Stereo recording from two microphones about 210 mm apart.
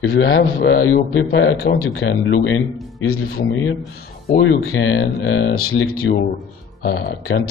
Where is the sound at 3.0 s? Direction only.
85° left; by 5.5 s 65° left (ahead or behind).